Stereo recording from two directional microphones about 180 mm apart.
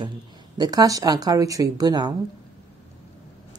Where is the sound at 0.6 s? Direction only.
20° right (ahead or behind).